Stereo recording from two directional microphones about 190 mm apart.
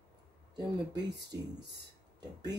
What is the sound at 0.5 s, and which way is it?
Speech, 20° right (ahead or behind).